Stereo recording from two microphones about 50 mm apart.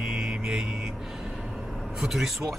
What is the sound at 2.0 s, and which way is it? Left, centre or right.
Speech, centre.